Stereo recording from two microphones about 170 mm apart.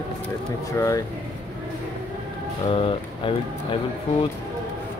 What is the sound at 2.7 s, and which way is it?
Speech, 30° left (ahead or behind).